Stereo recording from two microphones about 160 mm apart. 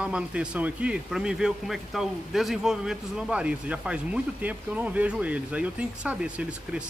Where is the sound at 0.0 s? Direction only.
5° right (ahead or behind).